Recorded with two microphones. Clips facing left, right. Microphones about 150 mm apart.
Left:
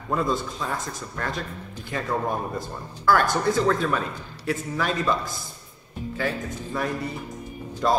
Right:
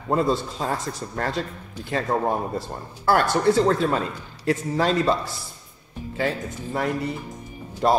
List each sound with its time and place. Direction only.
0.1 s a man's voice: 30° right (ahead or behind)